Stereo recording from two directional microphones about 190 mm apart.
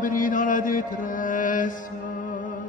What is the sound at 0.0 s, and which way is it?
Music, 45° left (ahead or behind).